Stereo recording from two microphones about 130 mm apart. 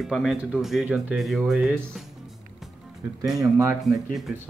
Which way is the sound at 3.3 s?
25° right (ahead or behind).